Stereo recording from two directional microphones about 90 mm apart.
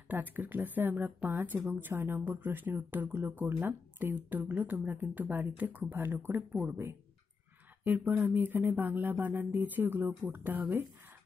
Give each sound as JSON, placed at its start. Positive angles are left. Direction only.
{"t": 0.1, "sound": "speech", "side_deg": -20}
{"t": 6.5, "sound": "speech", "side_deg": -10}
{"t": 7.8, "sound": "speech", "side_deg": -20}